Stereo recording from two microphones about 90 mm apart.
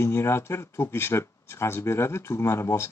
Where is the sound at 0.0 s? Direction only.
30° left (ahead or behind).